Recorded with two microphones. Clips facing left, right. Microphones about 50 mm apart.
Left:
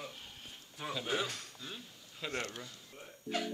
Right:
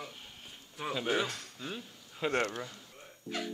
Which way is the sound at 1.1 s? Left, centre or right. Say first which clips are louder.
Right 3 dB; right.